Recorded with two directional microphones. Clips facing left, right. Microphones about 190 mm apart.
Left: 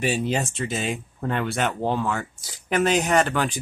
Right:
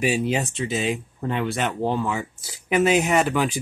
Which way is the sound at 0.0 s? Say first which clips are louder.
Right 2 dB; 5° right (ahead or behind).